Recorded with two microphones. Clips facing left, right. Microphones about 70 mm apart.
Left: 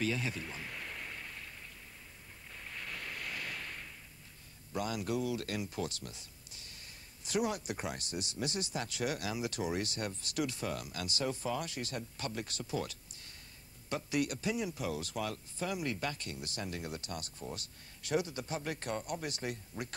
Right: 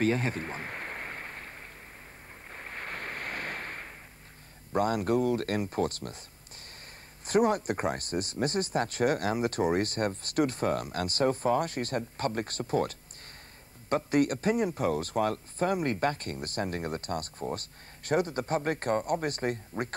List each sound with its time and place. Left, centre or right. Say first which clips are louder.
0.0 s a sound: right 8 dB; right
2.5 s waves: right 6 dB; right
4.7 s speech: right 9 dB; right
7.2 s speech: right 9 dB; right